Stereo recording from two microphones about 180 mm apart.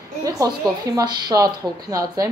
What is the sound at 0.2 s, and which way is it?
A woman's voice, 20° right (ahead or behind).